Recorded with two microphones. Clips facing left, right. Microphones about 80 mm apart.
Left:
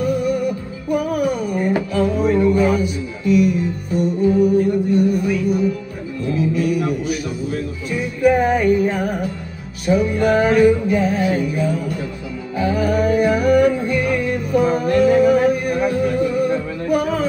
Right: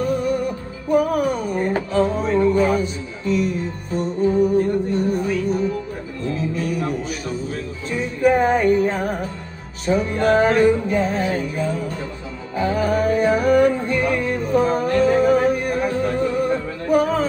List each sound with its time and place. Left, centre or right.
0.0 s music: right
6.5 s a sound: right
8.2 s music: right